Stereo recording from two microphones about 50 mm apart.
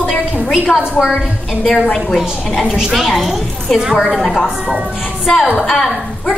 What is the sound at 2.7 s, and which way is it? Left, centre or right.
Speech, centre.